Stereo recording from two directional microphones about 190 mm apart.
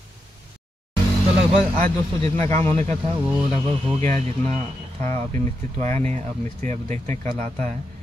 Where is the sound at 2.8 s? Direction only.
25° right (ahead or behind).